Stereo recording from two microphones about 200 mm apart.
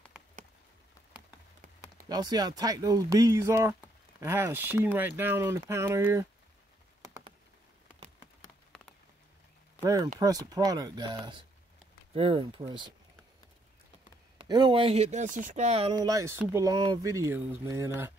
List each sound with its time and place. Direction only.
2.0 s speech: 20° right (ahead or behind)
9.8 s a sound: 15° right (ahead or behind)
10.1 s speech: 20° right (ahead or behind)
14.4 s speech: 25° right (ahead or behind)
16.1 s speech: 15° right (ahead or behind)